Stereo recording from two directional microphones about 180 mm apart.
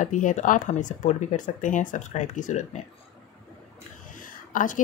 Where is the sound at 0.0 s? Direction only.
45° left (ahead or behind).